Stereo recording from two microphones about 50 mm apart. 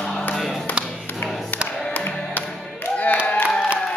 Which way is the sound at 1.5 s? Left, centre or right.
Left.